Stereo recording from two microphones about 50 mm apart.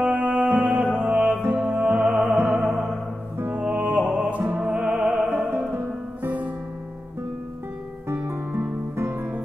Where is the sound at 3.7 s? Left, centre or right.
Right.